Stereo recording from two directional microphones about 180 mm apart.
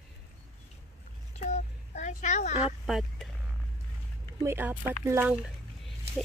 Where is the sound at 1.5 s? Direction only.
40° left (ahead or behind).